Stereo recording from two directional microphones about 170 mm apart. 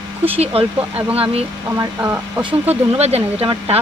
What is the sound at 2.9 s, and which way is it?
Speech, 35° right (ahead or behind).